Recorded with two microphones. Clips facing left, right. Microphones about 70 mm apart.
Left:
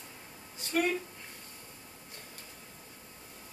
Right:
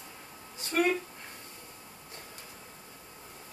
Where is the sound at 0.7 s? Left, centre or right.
Right.